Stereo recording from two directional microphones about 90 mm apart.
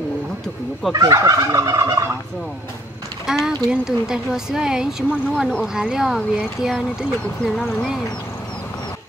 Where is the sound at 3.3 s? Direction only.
5° right (ahead or behind).